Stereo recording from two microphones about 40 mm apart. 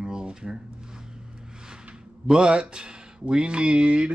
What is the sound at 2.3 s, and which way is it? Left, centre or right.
Speech, right.